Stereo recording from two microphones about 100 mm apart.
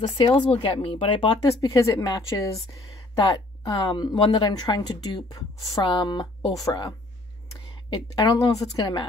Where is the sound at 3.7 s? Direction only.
55° left (ahead or behind).